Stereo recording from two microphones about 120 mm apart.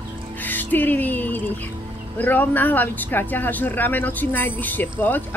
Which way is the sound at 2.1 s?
15° left (ahead or behind).